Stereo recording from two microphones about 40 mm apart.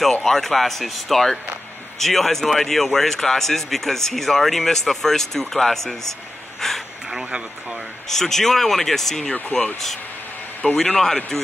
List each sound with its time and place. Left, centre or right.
0.2 s speech: centre
6.6 s a sound: centre
7.1 s a sound: centre
8.1 s speech: centre
10.6 s a man's voice: left
11.0 s speech: centre